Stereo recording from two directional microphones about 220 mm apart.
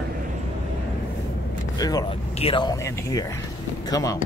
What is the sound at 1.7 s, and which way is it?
Speech, 15° left (ahead or behind).